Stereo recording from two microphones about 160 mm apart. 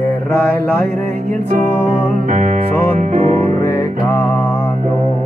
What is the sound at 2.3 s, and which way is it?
Music, 50° right (ahead or behind).